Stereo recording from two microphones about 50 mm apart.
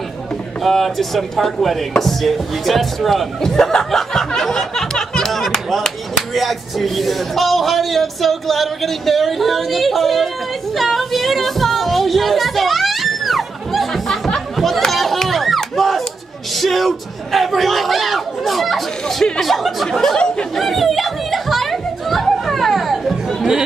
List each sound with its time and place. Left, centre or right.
0.6 s speech: centre
4.4 s music: centre
16.5 s speech: centre
20.2 s speech: centre
20.5 s children playing: centre